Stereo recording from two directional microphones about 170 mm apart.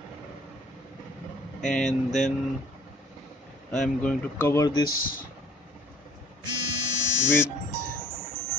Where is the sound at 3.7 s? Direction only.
5° left (ahead or behind); by 4.8 s 20° left (ahead or behind).